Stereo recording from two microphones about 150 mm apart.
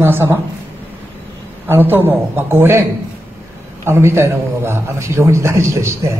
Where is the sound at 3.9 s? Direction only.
15° right (ahead or behind).